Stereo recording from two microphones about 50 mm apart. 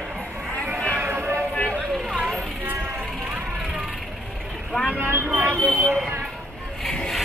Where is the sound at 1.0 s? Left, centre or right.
Right.